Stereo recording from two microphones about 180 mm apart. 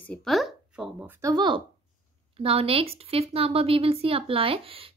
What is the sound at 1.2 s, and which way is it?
A woman's voice, 20° right (ahead or behind).